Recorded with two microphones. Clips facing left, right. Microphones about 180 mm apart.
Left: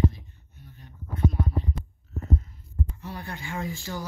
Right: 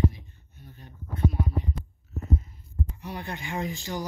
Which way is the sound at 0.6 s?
30° right (ahead or behind).